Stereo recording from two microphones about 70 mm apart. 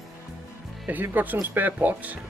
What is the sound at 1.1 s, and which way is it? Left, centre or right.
Speech, right.